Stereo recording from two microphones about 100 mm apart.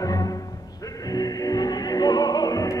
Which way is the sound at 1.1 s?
40° left (ahead or behind).